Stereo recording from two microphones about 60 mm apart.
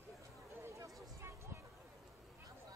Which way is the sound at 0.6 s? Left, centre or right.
Right.